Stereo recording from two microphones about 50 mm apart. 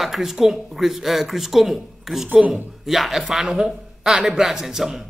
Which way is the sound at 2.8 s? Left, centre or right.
Centre.